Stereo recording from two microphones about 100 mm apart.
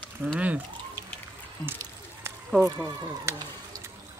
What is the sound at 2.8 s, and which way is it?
Speech, 35° right (ahead or behind).